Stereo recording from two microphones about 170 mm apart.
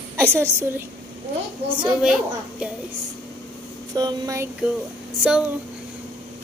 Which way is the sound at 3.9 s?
20° right (ahead or behind).